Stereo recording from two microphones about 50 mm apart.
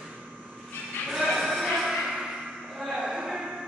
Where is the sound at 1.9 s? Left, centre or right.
Centre.